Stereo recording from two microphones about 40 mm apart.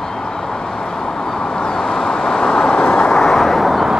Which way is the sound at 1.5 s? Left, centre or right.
Centre.